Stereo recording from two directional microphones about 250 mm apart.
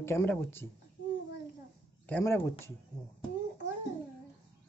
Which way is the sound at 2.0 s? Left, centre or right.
Centre.